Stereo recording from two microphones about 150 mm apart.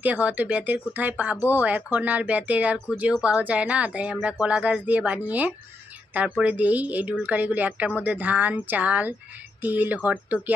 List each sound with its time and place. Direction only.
0.0 s speech: 10° right (ahead or behind)